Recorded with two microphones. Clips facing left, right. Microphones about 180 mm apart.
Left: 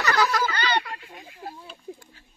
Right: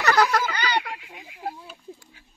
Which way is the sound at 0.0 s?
65° right (ahead or behind).